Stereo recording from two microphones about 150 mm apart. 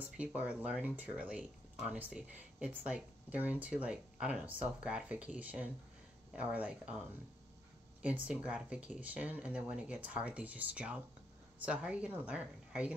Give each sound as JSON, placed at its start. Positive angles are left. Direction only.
{"t": 0.0, "sound": "speech", "side_deg": -10}
{"t": 8.0, "sound": "speech", "side_deg": -10}